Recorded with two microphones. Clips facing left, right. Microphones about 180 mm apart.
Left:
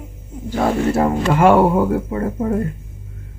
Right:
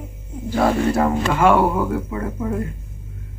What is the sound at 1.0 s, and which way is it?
Speech, 35° left (ahead or behind).